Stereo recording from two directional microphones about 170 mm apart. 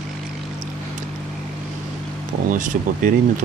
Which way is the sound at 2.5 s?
50° right (ahead or behind).